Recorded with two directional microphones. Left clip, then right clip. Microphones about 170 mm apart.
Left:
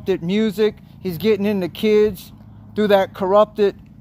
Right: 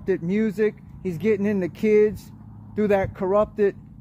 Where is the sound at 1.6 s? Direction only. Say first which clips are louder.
Left 3 dB; 10° left (ahead or behind).